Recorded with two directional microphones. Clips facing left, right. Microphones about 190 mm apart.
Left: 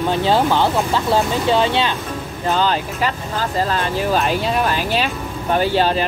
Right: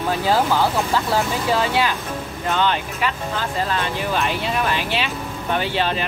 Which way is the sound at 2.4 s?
35° left (ahead or behind).